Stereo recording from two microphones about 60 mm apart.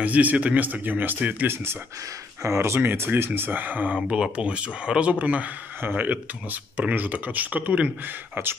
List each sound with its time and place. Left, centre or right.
0.0 s speech: right
2.4 s speech: right
8.4 s speech: right